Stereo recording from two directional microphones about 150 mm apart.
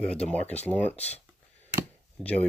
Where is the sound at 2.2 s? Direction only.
10° left (ahead or behind).